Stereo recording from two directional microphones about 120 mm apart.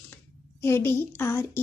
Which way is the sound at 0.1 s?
20° left (ahead or behind).